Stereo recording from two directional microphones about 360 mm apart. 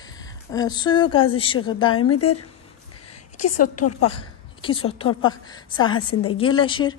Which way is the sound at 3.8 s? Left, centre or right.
Left.